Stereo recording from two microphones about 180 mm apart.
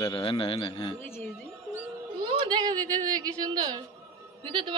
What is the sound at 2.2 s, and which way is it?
A woman's voice, 25° right (ahead or behind).